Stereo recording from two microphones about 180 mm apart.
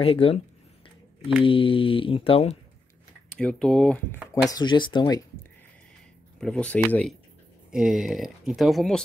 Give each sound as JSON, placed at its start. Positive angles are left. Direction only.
{"t": 0.0, "sound": "speech", "side_deg": 30}
{"t": 1.4, "sound": "speech", "side_deg": 30}
{"t": 3.3, "sound": "speech", "side_deg": 5}
{"t": 4.5, "sound": "speech", "side_deg": 25}
{"t": 6.4, "sound": "speech", "side_deg": 5}